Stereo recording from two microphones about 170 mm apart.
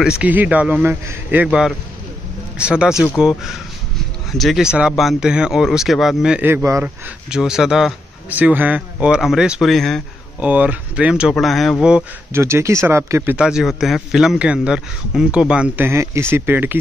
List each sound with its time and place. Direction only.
0.2 s a man's voice: 10° right (ahead or behind)
7.2 s a man's voice: 5° right (ahead or behind)
12.3 s speech: 15° right (ahead or behind)